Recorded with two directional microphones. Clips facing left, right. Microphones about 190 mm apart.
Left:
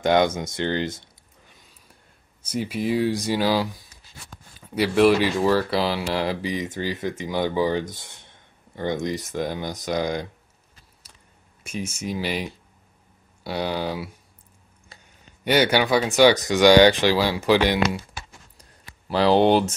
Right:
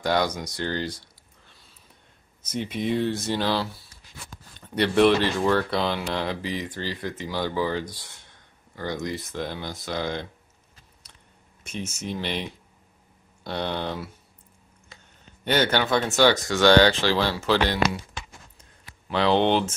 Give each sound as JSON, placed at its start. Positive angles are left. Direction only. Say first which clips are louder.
{"t": 0.0, "sound": "speech", "louder": "left 5 dB", "side_deg": 20}
{"t": 2.5, "sound": "speech", "louder": "left 2 dB", "side_deg": 5}
{"t": 6.5, "sound": "speech", "louder": "left 4 dB", "side_deg": 20}
{"t": 11.6, "sound": "speech", "louder": "left 3 dB", "side_deg": 10}
{"t": 15.4, "sound": "speech", "louder": "left 3 dB", "side_deg": 10}
{"t": 18.6, "sound": "a sound", "louder": "left 2 dB", "side_deg": 35}